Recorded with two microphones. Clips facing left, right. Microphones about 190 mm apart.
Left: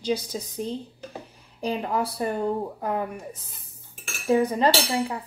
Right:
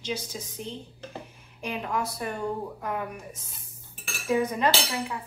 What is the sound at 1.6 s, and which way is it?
A woman's voice, 35° left (ahead or behind).